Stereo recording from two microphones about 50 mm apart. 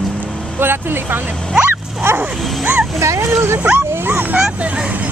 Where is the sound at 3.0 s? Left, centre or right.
Right.